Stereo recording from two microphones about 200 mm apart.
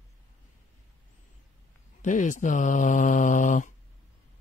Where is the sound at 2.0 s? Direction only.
40° left (ahead or behind).